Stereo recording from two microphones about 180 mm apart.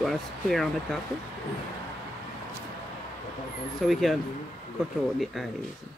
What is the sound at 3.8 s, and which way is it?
Speech, centre (ahead or behind).